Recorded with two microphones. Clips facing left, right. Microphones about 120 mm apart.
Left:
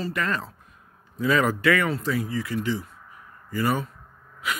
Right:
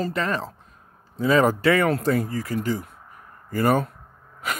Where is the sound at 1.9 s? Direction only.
50° right (ahead or behind).